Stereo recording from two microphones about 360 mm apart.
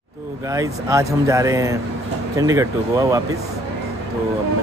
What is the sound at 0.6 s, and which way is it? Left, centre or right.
Speech, centre.